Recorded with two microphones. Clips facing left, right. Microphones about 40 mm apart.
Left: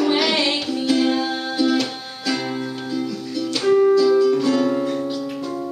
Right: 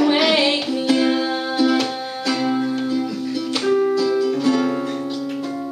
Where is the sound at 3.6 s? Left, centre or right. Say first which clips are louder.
Left 4 dB; centre.